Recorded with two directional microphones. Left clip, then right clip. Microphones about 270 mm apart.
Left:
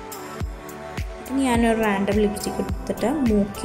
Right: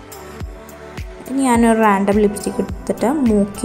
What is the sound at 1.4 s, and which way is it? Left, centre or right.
A woman's voice, centre.